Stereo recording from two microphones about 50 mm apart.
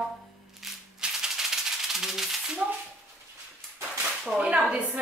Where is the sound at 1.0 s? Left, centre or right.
Centre.